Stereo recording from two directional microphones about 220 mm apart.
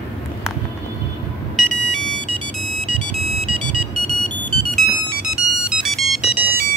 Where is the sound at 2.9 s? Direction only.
35° left (ahead or behind).